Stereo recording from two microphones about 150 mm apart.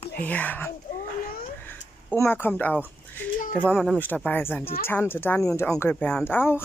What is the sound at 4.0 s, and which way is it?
Speech, 10° left (ahead or behind).